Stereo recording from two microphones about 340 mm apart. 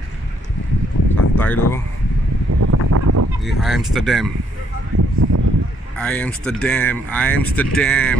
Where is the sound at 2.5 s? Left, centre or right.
Right.